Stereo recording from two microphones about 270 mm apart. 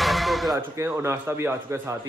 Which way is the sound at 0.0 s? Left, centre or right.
Centre.